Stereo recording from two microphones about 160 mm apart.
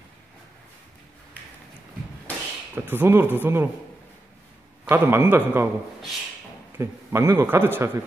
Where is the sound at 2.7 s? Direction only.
15° right (ahead or behind).